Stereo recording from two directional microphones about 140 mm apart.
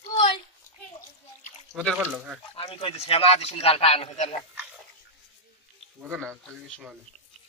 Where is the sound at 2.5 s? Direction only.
40° left (ahead or behind).